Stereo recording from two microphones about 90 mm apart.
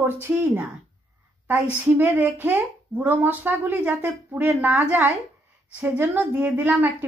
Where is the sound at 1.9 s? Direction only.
20° right (ahead or behind).